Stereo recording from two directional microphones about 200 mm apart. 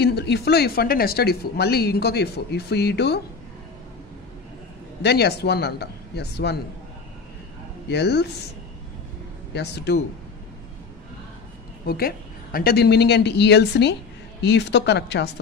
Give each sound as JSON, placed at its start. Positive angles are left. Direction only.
{"t": 0.0, "sound": "speech", "side_deg": 55}
{"t": 5.0, "sound": "speech", "side_deg": 55}
{"t": 7.9, "sound": "speech", "side_deg": 55}
{"t": 9.5, "sound": "speech", "side_deg": 55}
{"t": 11.8, "sound": "a woman's voice", "side_deg": 50}